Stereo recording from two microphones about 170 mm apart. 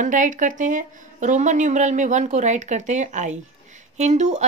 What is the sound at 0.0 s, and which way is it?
Speech, 50° right (ahead or behind).